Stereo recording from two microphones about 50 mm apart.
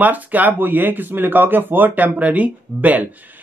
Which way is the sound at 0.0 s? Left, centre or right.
Right.